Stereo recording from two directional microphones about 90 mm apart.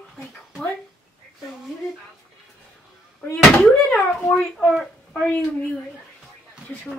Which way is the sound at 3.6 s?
10° left (ahead or behind).